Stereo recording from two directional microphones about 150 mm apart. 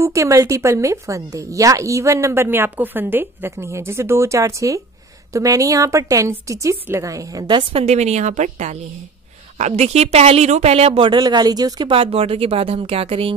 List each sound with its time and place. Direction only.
0.0 s speech: 20° right (ahead or behind)
7.8 s a woman's voice: 50° right (ahead or behind)